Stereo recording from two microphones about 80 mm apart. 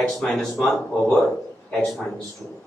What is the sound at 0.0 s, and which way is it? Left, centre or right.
Speech, centre.